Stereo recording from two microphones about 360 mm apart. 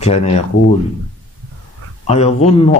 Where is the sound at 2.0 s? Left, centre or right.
Centre.